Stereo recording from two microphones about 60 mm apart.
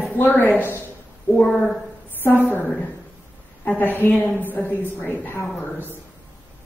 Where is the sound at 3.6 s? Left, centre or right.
Left.